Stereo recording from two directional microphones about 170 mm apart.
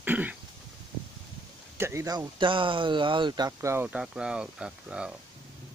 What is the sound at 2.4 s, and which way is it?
Speech, 30° right (ahead or behind).